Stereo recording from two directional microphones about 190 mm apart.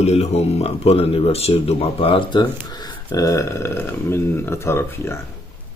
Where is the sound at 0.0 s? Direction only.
35° left (ahead or behind).